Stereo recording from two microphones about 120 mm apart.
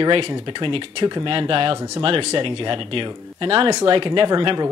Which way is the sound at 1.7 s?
25° right (ahead or behind).